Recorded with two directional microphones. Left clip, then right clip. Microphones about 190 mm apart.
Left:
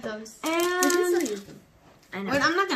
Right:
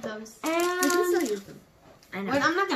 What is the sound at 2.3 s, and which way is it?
Speech, 25° left (ahead or behind).